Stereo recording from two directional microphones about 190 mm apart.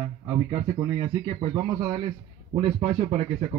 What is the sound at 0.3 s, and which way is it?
A man's voice, 20° right (ahead or behind).